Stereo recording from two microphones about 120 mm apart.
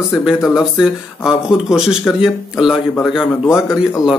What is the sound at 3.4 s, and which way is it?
Speech, 25° left (ahead or behind).